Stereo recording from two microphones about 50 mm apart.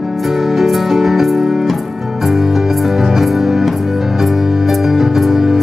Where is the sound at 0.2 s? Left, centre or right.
Centre.